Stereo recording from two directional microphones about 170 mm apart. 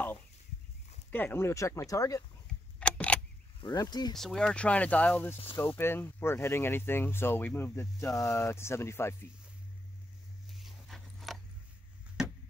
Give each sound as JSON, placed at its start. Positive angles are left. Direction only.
{"t": 1.1, "sound": "speech", "side_deg": 15}
{"t": 2.8, "sound": "keys jangling", "side_deg": 5}
{"t": 3.6, "sound": "speech", "side_deg": 25}
{"t": 4.2, "sound": "speech", "side_deg": 5}
{"t": 10.5, "sound": "dog", "side_deg": 0}